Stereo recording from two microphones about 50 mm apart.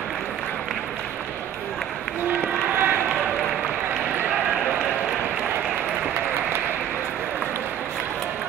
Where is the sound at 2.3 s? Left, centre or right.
Right.